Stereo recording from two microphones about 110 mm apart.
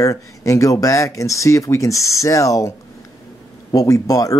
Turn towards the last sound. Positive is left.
turn(degrees=30)  # may be behind; listen again after turning